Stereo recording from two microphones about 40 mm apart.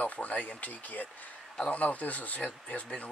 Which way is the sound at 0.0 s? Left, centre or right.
Left.